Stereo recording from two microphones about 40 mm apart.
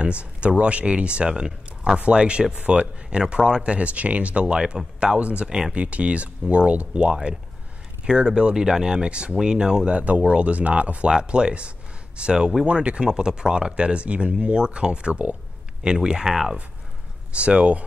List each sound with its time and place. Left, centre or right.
0.0 s speech: right
9.9 s speech: right
11.1 s speech: right